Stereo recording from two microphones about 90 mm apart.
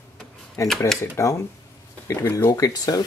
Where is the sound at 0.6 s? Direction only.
35° left (ahead or behind).